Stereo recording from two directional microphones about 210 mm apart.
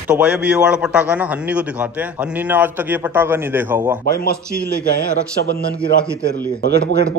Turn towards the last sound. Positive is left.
turn(degrees=-50)  # may be behind; listen again after turning